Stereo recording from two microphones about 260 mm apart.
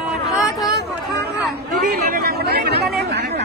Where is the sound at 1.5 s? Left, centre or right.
Right.